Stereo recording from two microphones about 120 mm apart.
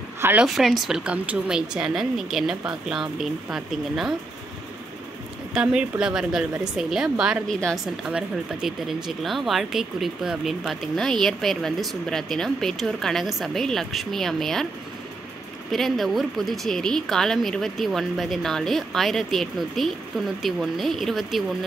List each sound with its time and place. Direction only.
0.2 s speech: 15° right (ahead or behind)
0.6 s speech: centre (ahead or behind)
5.5 s speech: 5° right (ahead or behind)
15.7 s speech: centre (ahead or behind)